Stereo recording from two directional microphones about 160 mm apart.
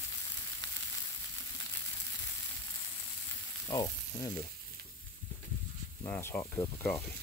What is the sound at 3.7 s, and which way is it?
Sizzle, 25° left (ahead or behind).